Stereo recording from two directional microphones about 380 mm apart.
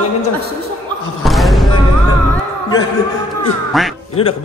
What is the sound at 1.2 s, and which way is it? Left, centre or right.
Music, centre.